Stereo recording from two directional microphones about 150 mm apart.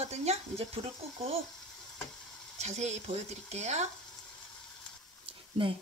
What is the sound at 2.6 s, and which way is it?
Speech, 50° right (ahead or behind).